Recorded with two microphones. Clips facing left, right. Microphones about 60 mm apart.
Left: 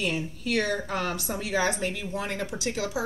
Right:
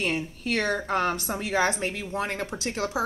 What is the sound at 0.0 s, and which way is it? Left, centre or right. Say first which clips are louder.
A woman's voice: right 1 dB; right.